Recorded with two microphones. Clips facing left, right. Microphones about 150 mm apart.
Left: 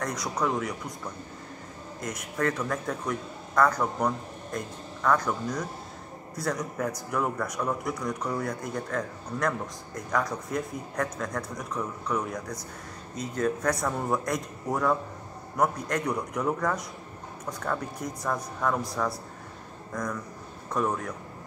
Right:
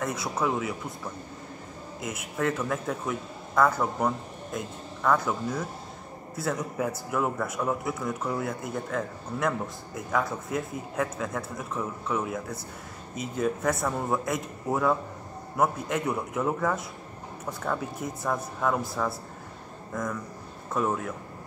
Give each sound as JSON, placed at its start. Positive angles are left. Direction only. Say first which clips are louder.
{"t": 0.0, "sound": "a man's voice", "louder": "right 1 dB", "side_deg": -5}